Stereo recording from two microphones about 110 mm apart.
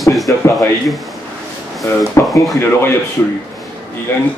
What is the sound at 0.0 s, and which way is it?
Speech, centre (ahead or behind).